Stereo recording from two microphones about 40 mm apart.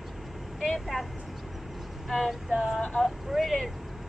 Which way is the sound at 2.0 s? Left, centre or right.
Centre.